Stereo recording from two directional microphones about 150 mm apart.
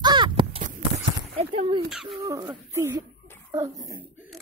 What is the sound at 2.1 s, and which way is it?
Speech, 25° right (ahead or behind).